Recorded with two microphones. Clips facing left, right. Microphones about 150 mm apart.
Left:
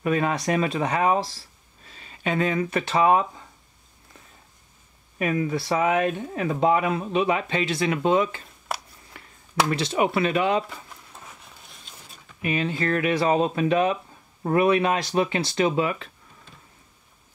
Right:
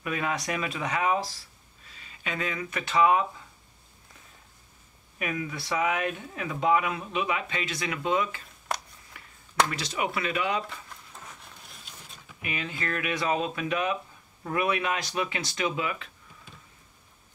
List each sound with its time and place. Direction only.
0.0 s speech: 35° left (ahead or behind)
5.2 s speech: 35° left (ahead or behind)
9.7 s speech: 30° left (ahead or behind)
11.4 s a sound: centre (ahead or behind)
12.4 s speech: 35° left (ahead or behind)